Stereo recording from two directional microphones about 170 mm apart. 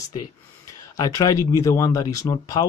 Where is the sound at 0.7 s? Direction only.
20° left (ahead or behind).